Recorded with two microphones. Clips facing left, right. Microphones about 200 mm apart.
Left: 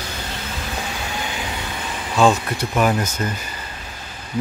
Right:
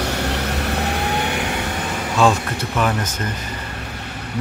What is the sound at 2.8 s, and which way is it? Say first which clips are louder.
Speech: left 2 dB; 10° left (ahead or behind).